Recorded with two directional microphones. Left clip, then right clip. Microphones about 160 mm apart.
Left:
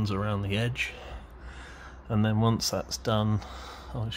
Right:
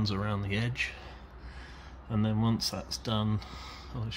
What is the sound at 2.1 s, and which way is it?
Speech, 40° left (ahead or behind).